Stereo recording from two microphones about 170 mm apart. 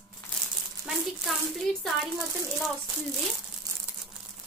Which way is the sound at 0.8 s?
Centre (ahead or behind).